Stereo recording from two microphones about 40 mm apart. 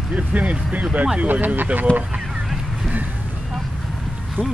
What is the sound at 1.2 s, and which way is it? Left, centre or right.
Speech, right.